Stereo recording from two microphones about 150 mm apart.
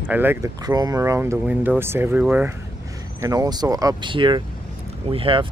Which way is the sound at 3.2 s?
25° right (ahead or behind).